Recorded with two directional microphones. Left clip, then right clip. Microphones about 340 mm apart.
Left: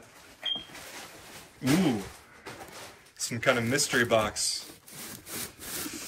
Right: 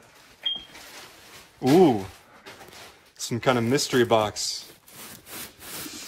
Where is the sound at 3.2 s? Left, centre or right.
Centre.